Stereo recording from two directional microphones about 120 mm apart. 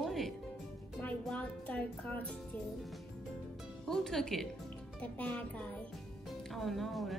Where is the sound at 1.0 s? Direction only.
15° left (ahead or behind).